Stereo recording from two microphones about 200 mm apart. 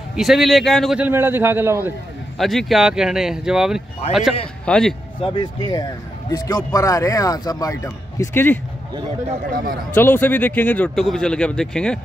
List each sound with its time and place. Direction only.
0.1 s speech: centre (ahead or behind)
2.3 s speech: centre (ahead or behind)
5.2 s speech: 25° left (ahead or behind)
9.8 s speech: 10° left (ahead or behind)